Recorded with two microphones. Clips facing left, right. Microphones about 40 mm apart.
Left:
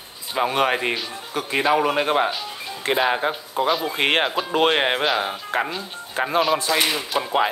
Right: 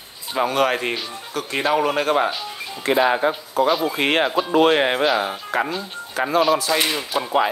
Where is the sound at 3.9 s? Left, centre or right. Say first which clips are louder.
Right 1 dB; left.